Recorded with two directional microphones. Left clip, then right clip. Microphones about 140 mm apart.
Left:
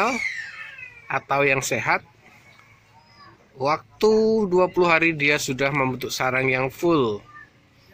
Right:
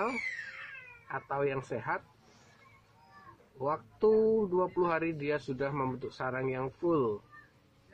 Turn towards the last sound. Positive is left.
turn(degrees=30)  # may be behind; listen again after turning